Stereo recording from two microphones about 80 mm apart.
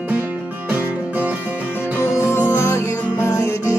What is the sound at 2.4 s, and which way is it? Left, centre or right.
Music, left.